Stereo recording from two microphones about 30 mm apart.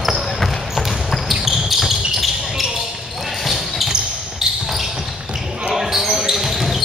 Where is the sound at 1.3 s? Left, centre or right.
Centre.